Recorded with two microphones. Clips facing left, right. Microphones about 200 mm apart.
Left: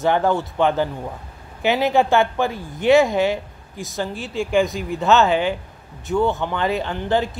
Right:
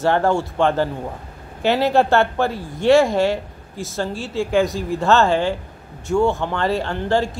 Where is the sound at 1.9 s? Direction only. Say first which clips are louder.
Right 1 dB; centre (ahead or behind).